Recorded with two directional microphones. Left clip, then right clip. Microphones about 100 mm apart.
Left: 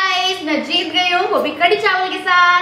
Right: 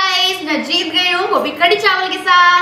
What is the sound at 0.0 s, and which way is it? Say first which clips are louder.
A child's voice: right 2 dB; 15° right (ahead or behind).